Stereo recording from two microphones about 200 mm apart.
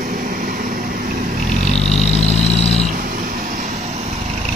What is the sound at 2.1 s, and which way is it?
Vehicle, 30° left (ahead or behind).